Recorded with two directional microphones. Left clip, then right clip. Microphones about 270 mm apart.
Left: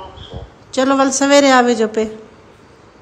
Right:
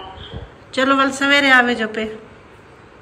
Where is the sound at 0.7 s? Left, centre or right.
Centre.